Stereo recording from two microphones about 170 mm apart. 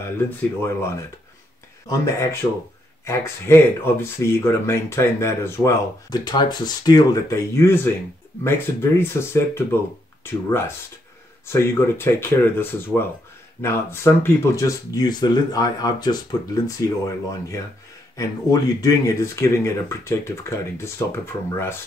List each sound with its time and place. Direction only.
1.9 s speech: 15° left (ahead or behind)
11.4 s speech: 15° left (ahead or behind)